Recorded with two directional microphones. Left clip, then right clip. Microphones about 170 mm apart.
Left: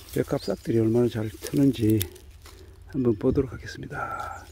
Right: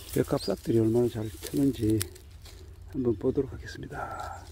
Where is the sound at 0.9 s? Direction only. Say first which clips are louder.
Left 3 dB; 55° left (ahead or behind).